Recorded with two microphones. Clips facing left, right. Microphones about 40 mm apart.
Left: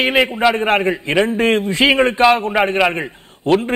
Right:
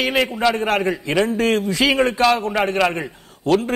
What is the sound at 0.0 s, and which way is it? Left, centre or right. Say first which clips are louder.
A man's voice: left 4 dB; left.